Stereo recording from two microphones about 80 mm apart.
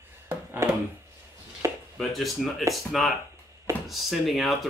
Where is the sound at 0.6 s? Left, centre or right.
Right.